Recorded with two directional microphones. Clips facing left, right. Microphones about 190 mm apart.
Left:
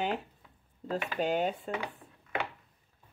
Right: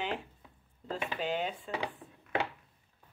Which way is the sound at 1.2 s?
45° left (ahead or behind).